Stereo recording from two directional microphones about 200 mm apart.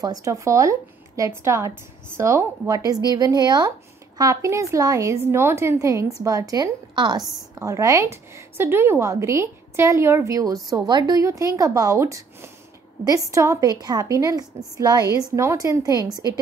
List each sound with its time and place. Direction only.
0.0 s a woman's voice: 15° right (ahead or behind)